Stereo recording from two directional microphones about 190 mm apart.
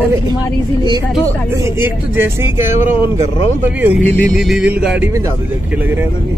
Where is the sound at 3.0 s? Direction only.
25° left (ahead or behind).